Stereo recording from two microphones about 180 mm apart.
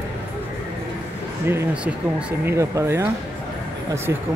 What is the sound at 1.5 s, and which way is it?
Speech, 10° right (ahead or behind).